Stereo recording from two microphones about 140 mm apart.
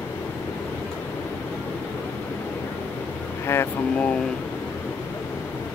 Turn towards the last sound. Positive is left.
turn(degrees=15)  # may be behind; listen again after turning